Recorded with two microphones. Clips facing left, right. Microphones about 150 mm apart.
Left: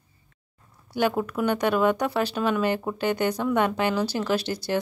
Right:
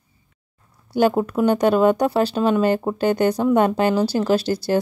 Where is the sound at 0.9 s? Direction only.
35° right (ahead or behind).